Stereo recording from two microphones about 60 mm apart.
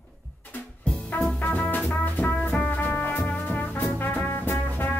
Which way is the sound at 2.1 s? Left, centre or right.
Left.